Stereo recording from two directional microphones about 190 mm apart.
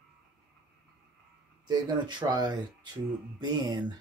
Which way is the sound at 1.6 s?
20° right (ahead or behind).